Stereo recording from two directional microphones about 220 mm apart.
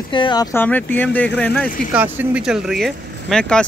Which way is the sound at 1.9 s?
5° right (ahead or behind).